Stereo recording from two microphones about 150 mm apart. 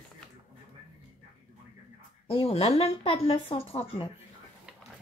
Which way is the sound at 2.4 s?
40° left (ahead or behind).